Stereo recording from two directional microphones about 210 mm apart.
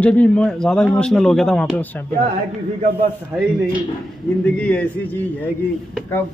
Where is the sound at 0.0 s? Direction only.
5° left (ahead or behind).